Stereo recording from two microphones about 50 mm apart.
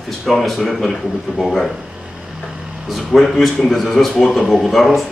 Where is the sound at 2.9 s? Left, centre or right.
Centre.